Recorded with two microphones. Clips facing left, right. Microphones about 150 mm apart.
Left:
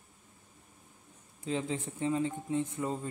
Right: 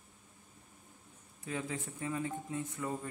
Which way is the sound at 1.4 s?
25° left (ahead or behind).